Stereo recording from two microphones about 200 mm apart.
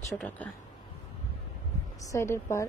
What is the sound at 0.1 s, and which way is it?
Speech, 10° left (ahead or behind).